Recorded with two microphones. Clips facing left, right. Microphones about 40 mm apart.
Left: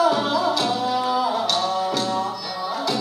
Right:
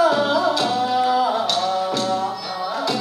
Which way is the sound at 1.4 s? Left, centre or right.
Centre.